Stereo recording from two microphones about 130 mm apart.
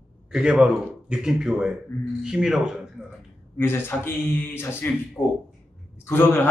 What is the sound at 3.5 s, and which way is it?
A man's voice, 15° left (ahead or behind).